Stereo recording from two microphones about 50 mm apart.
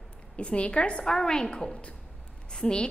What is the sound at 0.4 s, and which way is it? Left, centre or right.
A woman's voice, left.